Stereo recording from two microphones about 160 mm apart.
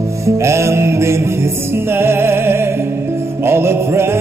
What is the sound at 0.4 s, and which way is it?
Music, 15° right (ahead or behind).